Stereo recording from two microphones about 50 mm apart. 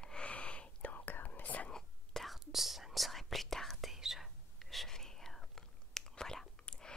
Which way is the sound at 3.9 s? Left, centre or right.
Centre.